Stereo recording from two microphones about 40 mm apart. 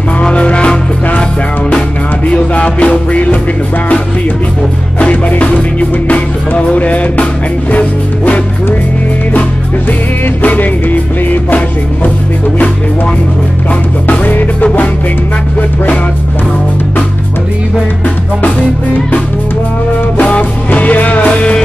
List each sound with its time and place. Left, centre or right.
0.2 s music: left
2.5 s music: left
5.4 s music: left
10.4 s music: left
14.0 s music: left
20.2 s music: left